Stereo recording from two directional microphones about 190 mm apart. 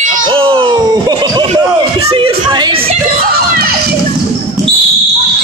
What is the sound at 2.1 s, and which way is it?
Music, 25° right (ahead or behind).